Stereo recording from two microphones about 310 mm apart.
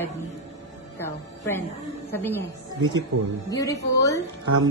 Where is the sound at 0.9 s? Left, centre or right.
Centre.